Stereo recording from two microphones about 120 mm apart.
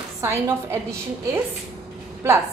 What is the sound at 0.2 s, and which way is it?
Speech, 20° right (ahead or behind).